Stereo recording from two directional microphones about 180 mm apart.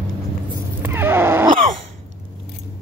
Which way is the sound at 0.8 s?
15° right (ahead or behind).